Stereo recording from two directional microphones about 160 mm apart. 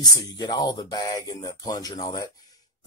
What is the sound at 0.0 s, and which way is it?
Speech, 25° left (ahead or behind).